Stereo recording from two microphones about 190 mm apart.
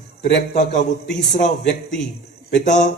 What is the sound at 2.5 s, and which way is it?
Speech, 40° left (ahead or behind).